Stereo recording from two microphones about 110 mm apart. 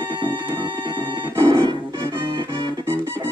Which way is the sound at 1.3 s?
50° right (ahead or behind).